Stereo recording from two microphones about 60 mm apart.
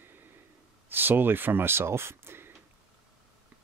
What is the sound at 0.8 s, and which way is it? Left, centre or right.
Speech, right.